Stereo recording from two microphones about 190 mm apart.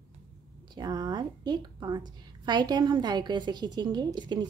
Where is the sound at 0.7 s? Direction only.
20° right (ahead or behind).